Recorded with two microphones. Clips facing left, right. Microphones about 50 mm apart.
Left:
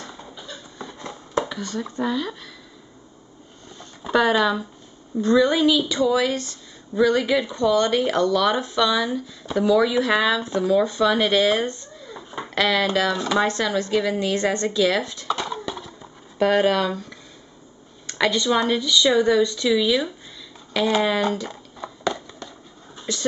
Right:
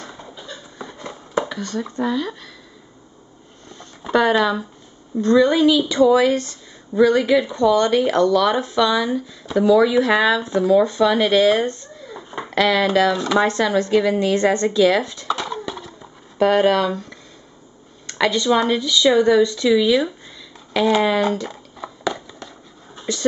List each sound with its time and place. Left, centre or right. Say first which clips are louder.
0.0 s a sound: right 2 dB; centre
3.6 s a sound: right 1 dB; centre
5.2 s speech: right 3 dB; centre
6.0 s a woman's voice: right 7 dB; centre
7.0 s a woman's voice: right 4 dB; centre
8.8 s speech: right 1 dB; centre
13.6 s a woman's voice: right 5 dB; centre
15.2 s horse: right 2 dB; centre
18.0 s speech: right 2 dB; centre
20.7 s a sound: right 3 dB; centre